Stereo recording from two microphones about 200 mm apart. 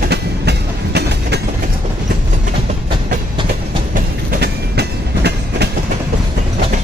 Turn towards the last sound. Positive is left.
turn(degrees=-55)  # may be behind; listen again after turning